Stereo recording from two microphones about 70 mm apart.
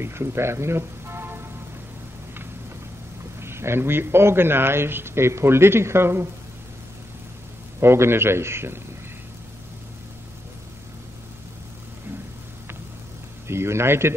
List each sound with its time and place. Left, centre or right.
0.0 s speech: right
3.3 s a man's voice: right
7.8 s a man's voice: right
13.5 s a man's voice: right